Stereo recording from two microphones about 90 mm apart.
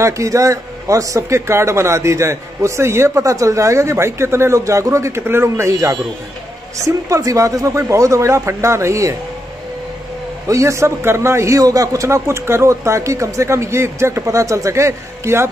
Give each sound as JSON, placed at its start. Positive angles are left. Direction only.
{"t": 0.0, "sound": "speech", "side_deg": -35}
{"t": 7.1, "sound": "speech", "side_deg": -35}
{"t": 10.5, "sound": "speech", "side_deg": -35}